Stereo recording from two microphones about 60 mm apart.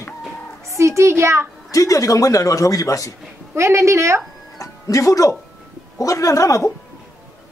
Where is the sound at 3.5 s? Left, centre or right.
Right.